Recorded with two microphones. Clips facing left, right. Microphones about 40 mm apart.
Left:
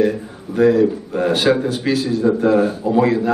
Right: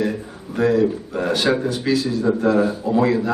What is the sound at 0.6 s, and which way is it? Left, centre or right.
A man's voice, centre.